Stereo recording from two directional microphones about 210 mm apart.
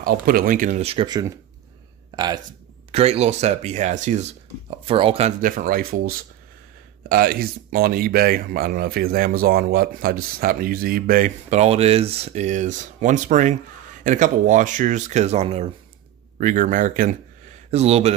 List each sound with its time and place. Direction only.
0.0 s speech: 45° right (ahead or behind); by 2.4 s 20° right (ahead or behind)
2.9 s speech: 30° right (ahead or behind)